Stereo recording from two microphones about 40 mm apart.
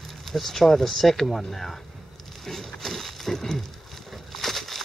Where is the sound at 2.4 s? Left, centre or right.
Centre.